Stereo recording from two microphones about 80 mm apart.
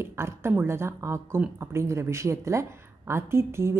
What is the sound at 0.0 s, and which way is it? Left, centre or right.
A woman's voice, right.